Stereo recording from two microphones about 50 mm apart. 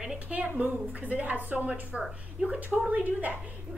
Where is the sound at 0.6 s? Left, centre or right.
Right.